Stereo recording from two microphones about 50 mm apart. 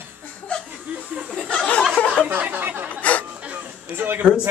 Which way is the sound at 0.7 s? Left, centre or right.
Right.